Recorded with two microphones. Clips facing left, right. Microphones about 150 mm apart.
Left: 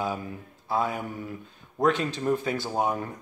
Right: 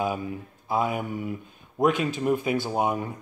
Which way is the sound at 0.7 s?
15° right (ahead or behind).